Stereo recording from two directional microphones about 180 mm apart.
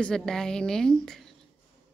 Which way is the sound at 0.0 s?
5° left (ahead or behind).